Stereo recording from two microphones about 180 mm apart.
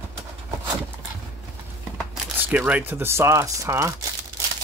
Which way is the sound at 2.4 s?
10° right (ahead or behind).